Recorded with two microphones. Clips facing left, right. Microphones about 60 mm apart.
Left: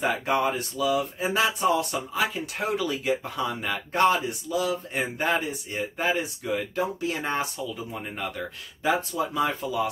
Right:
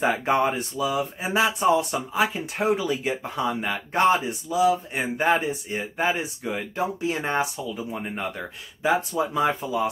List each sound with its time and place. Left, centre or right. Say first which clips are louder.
0.0 s speech: right 3 dB; right
5.8 s speech: even; centre